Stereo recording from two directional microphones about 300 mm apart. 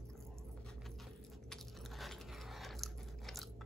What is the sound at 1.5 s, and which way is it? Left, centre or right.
Biting, centre.